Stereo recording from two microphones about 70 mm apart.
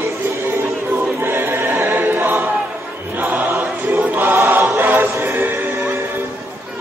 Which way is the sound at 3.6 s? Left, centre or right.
Right.